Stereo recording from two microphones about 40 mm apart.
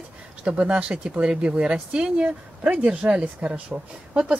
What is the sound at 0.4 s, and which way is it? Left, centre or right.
A woman's voice, right.